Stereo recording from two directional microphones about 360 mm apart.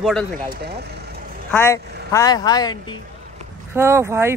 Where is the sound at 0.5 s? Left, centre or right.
Right.